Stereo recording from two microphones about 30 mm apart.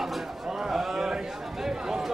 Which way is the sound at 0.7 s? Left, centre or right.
Centre.